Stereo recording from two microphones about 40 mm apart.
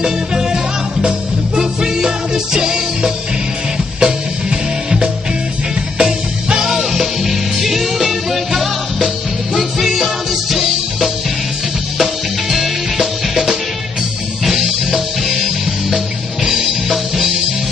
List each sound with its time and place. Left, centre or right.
0.0 s music: centre
1.6 s music: centre
16.4 s music: centre